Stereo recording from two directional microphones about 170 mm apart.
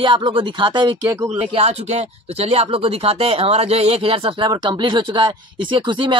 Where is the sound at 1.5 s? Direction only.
40° right (ahead or behind).